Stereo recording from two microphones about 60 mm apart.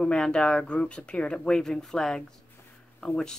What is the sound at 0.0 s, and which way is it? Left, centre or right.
Speech, centre.